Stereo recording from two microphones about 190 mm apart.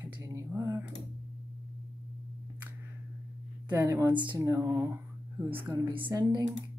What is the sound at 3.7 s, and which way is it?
Speech, 15° right (ahead or behind).